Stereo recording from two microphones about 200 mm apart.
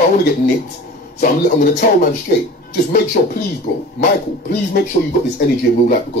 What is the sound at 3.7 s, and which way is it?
Speech, 60° left (ahead or behind).